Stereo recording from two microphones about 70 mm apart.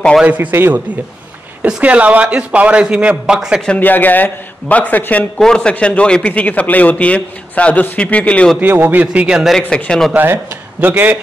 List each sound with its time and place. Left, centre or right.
0.2 s a man's voice: right
0.5 s a man's voice: right
1.8 s a man's voice: centre
3.8 s a man's voice: left
5.4 s a man's voice: centre
8.5 s a man's voice: right
9.8 s speech: centre
10.1 s a man's voice: right